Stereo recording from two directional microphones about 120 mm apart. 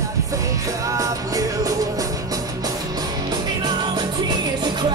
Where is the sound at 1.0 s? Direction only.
30° right (ahead or behind).